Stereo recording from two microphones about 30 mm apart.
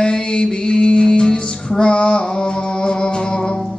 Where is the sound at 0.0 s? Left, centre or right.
Left.